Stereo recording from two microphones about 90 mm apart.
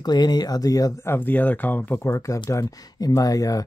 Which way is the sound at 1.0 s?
25° left (ahead or behind).